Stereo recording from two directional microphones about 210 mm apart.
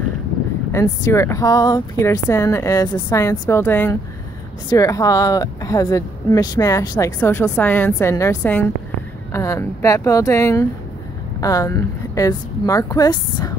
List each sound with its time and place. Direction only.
0.7 s speech: 15° left (ahead or behind)